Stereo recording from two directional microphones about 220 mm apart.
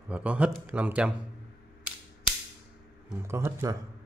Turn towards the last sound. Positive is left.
turn(degrees=-15)  # may be behind; listen again after turning